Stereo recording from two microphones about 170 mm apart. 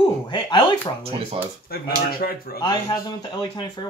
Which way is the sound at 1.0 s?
35° right (ahead or behind).